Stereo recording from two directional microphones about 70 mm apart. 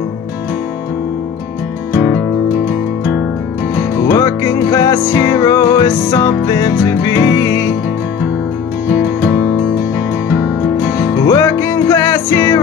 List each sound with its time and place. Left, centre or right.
4.0 s music: left
8.8 s music: right
11.2 s music: left